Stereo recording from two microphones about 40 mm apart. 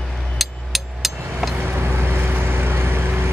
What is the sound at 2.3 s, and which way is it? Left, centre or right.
Vehicle, right.